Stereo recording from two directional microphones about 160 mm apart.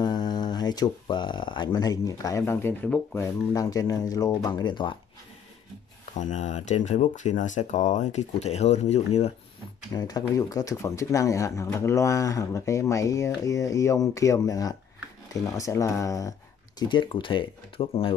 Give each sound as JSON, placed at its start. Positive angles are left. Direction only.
{"t": 0.0, "sound": "speech", "side_deg": 25}
{"t": 3.5, "sound": "speech", "side_deg": 25}
{"t": 6.1, "sound": "speech", "side_deg": 50}
{"t": 9.9, "sound": "speech", "side_deg": 25}